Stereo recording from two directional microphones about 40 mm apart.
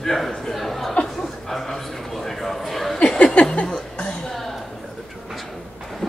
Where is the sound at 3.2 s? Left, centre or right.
Left.